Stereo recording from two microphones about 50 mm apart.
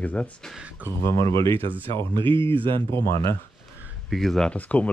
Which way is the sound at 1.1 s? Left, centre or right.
Left.